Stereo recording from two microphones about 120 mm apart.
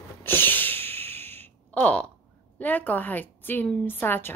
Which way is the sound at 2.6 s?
15° left (ahead or behind).